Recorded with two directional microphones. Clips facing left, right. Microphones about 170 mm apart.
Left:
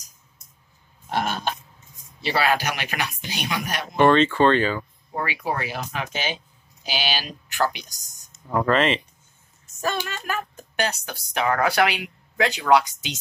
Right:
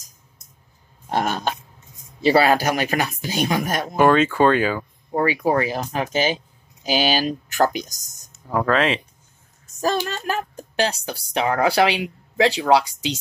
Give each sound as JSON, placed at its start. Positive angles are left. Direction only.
{"t": 1.1, "sound": "speech", "side_deg": -40}
{"t": 3.9, "sound": "speech", "side_deg": -10}
{"t": 5.1, "sound": "speech", "side_deg": -40}
{"t": 8.3, "sound": "speech", "side_deg": 0}
{"t": 9.8, "sound": "speech", "side_deg": -35}